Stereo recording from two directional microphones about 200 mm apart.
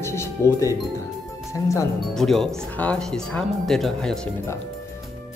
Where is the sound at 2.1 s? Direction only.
Centre (ahead or behind).